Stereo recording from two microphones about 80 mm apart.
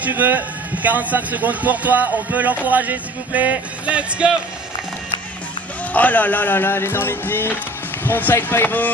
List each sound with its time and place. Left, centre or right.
0.0 s speech: right
5.9 s speech: left